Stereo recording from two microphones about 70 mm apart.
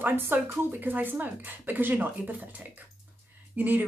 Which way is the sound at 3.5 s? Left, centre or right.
Right.